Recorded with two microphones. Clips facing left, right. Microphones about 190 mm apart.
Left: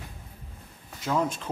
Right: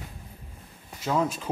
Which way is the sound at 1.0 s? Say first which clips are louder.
Right 1 dB; 5° right (ahead or behind).